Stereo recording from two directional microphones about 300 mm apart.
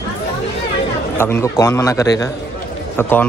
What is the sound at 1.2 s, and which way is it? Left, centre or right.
A man's voice, centre.